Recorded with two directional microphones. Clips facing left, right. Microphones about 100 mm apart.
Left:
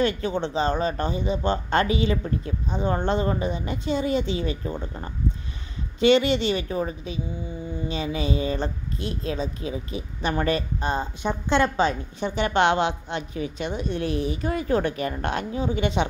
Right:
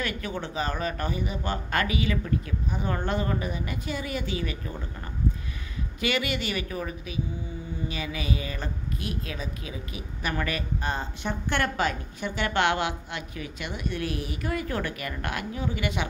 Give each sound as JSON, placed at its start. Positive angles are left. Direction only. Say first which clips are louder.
{"t": 0.0, "sound": "a woman's voice", "louder": "left 8 dB", "side_deg": 25}